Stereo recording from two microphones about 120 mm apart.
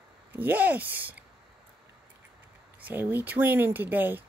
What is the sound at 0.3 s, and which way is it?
Speech, 15° right (ahead or behind).